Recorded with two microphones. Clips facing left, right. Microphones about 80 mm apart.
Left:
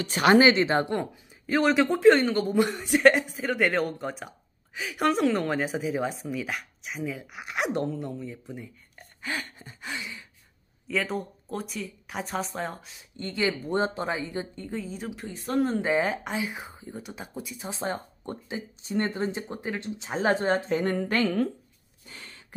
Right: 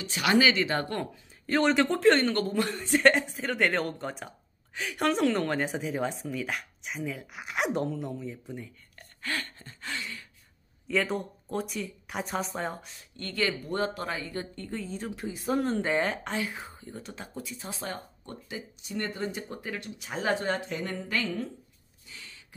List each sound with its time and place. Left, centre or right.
0.0 s speech: left
1.5 s a woman's voice: centre
2.4 s a woman's voice: centre
8.9 s a sound: centre
10.9 s a woman's voice: centre
13.1 s speech: centre
15.2 s speech: centre
17.7 s speech: left
22.1 s a sound: left